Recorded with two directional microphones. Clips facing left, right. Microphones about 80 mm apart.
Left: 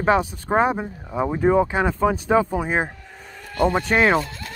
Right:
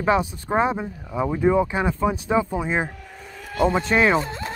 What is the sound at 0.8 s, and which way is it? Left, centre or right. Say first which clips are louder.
Speech: left 1 dB; left.